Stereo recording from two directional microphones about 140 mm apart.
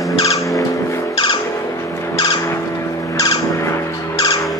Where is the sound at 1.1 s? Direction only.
35° left (ahead or behind).